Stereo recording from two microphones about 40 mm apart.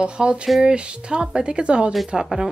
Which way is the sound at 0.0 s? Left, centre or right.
Right.